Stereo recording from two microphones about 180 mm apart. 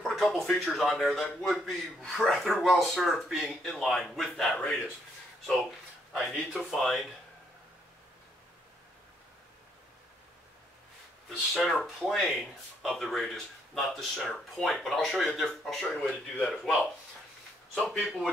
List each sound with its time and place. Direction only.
0.0 s speech: centre (ahead or behind)
11.5 s speech: centre (ahead or behind)